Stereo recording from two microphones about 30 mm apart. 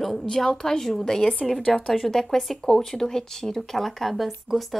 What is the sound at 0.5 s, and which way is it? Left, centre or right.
A woman's voice, left.